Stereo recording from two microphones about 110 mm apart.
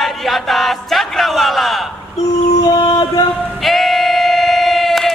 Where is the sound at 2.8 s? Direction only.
40° left (ahead or behind).